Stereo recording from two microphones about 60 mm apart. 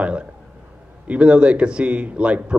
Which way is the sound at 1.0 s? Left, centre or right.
Right.